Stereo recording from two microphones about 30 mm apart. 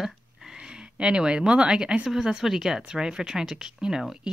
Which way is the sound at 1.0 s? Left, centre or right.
Right.